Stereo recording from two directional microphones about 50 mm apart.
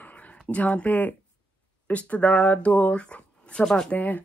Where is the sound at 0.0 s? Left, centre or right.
Left.